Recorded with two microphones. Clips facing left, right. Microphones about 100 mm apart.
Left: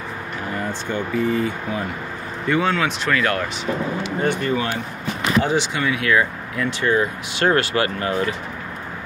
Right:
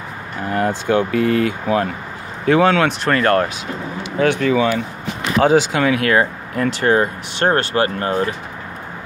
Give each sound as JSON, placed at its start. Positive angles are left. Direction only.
{"t": 0.5, "sound": "speech", "side_deg": -65}
{"t": 2.4, "sound": "speech", "side_deg": -75}
{"t": 3.1, "sound": "speech", "side_deg": -45}
{"t": 4.2, "sound": "speech", "side_deg": -90}
{"t": 5.4, "sound": "speech", "side_deg": -70}
{"t": 7.4, "sound": "speech", "side_deg": -35}